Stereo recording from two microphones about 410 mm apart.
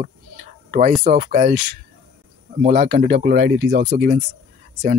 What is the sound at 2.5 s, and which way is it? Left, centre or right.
Speech, centre.